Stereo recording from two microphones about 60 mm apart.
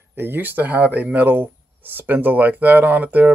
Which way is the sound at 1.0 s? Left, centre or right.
Right.